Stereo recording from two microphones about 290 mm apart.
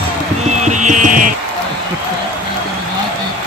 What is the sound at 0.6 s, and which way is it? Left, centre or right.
Music, right.